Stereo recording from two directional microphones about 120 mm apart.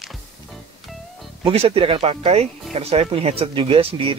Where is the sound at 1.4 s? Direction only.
50° right (ahead or behind).